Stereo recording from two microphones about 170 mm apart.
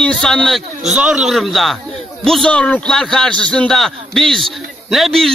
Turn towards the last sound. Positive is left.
turn(degrees=0)  # may be behind; listen again after turning